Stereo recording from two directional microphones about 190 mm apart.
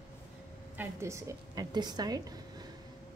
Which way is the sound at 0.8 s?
15° right (ahead or behind).